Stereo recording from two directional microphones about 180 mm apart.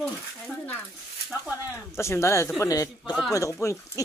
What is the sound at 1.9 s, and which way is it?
Speech, 15° left (ahead or behind).